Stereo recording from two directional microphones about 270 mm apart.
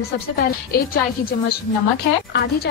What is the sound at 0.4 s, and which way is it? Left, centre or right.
Speech, left.